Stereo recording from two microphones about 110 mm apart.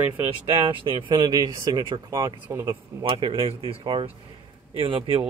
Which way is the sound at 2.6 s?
50° right (ahead or behind).